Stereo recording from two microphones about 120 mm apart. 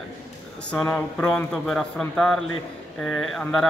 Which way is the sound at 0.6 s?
20° left (ahead or behind).